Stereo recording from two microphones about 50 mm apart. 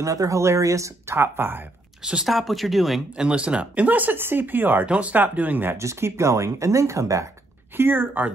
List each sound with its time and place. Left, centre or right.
0.0 s speech: right
1.1 s speech: right
2.2 s speech: centre
3.2 s speech: right
4.8 s speech: right
5.8 s speech: right
7.7 s speech: right